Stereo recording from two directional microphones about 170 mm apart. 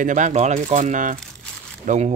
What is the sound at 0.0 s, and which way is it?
Speech, 45° right (ahead or behind).